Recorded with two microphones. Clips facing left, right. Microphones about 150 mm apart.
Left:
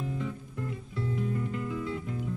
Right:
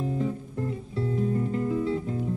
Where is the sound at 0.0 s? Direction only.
35° right (ahead or behind).